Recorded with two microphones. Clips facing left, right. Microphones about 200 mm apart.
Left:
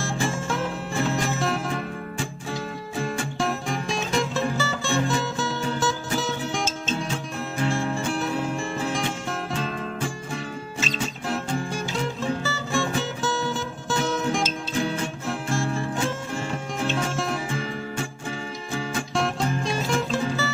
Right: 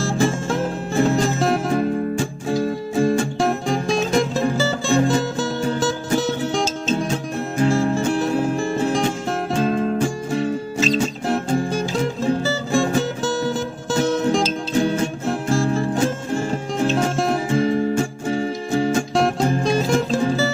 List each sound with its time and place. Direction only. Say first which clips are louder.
0.2 s music: right 6 dB; 35° right (ahead or behind)
1.0 s music: right 7 dB; 45° right (ahead or behind)
7.5 s music: right 8 dB; 40° right (ahead or behind)